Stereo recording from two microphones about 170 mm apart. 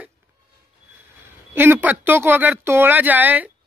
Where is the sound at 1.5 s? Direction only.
10° right (ahead or behind).